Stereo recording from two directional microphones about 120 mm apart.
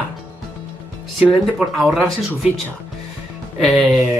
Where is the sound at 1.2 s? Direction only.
Centre (ahead or behind).